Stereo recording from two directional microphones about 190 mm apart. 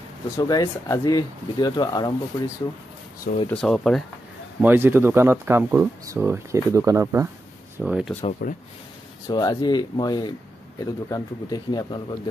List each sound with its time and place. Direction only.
0.4 s speech: 20° left (ahead or behind)
3.4 s speech: 5° left (ahead or behind)
4.6 s speech: 10° right (ahead or behind)
7.7 s speech: 5° right (ahead or behind)
8.2 s speech: 40° left (ahead or behind)
9.3 s speech: 20° left (ahead or behind)